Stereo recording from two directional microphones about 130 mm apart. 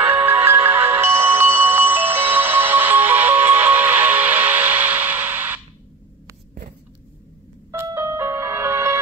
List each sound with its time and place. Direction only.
0.2 s music: 15° right (ahead or behind)
7.7 s music: 20° right (ahead or behind)